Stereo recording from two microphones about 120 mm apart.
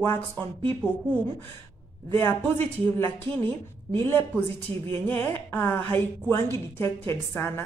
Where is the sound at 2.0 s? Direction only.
20° left (ahead or behind).